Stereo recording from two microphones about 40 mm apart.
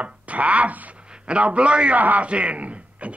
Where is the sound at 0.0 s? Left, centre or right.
Right.